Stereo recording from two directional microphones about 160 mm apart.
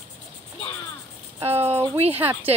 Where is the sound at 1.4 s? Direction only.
15° right (ahead or behind).